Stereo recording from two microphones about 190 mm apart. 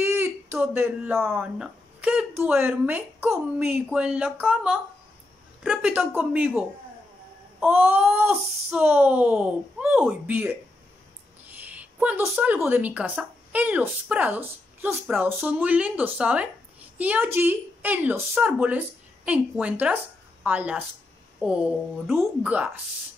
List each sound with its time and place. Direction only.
0.0 s a woman's voice: 10° right (ahead or behind)
7.6 s a woman's voice: 10° right (ahead or behind)